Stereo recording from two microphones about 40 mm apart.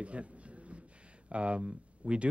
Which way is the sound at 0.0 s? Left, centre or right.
Right.